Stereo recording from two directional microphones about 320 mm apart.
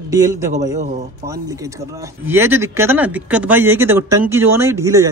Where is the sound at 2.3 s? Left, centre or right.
Centre.